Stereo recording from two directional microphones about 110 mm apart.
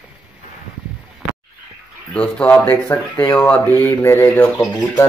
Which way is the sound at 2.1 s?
10° left (ahead or behind).